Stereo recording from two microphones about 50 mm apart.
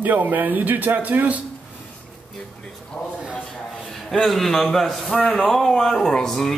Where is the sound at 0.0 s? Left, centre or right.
Right.